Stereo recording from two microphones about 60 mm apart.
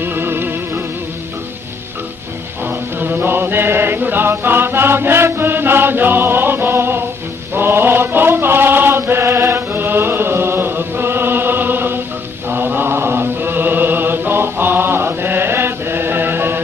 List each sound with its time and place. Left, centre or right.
0.0 s music: right
2.6 s chant: right
12.4 s mantra: right